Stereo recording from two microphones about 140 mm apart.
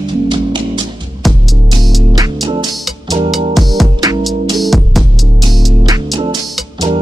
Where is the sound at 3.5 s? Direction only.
Centre (ahead or behind).